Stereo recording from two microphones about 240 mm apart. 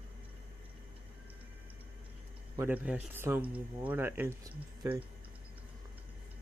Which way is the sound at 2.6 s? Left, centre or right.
Centre.